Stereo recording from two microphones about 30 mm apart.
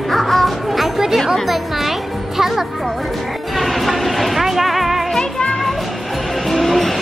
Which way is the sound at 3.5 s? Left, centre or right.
Centre.